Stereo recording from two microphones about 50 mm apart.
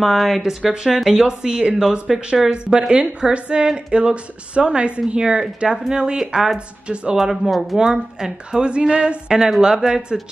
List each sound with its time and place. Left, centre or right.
0.0 s a woman's voice: centre